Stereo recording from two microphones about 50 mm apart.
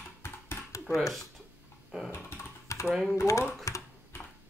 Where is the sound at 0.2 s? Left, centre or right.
Left.